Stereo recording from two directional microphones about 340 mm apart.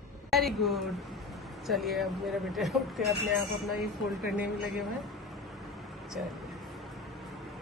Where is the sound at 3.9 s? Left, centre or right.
Centre.